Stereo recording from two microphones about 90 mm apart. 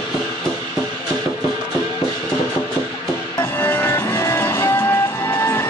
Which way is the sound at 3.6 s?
25° left (ahead or behind).